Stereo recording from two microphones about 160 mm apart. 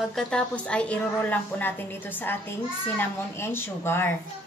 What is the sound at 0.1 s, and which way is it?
A woman's voice, 5° left (ahead or behind).